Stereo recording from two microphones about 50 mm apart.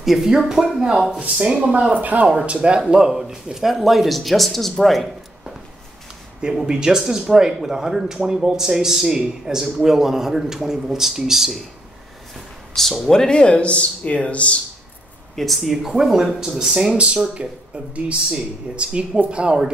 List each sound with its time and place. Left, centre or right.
0.0 s speech: centre
1.6 s speech: right
2.0 s speech: right
2.3 s speech: right; by 5.5 s centre
6.4 s speech: centre
12.4 s a sound: centre
13.0 s speech: centre
15.3 s speech: centre
16.9 s speech: right